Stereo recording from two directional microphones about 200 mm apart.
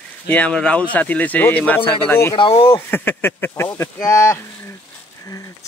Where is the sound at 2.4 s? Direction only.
25° left (ahead or behind).